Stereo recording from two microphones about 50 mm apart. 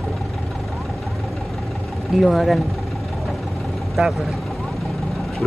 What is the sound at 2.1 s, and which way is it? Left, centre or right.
Speech, centre.